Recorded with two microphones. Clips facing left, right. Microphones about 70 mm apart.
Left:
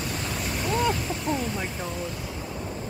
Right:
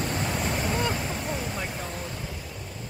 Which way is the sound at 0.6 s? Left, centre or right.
Centre.